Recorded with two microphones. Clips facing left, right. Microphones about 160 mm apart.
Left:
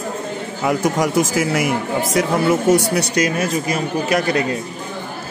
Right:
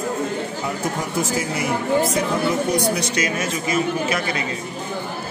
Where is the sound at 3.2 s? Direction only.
40° left (ahead or behind).